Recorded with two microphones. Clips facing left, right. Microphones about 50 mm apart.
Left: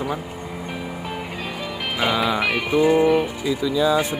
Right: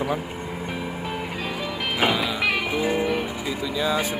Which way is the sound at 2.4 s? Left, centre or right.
Centre.